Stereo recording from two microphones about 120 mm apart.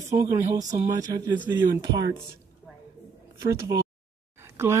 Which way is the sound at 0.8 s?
30° right (ahead or behind).